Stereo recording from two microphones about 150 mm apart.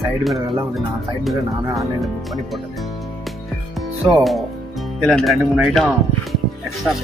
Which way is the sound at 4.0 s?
Centre (ahead or behind).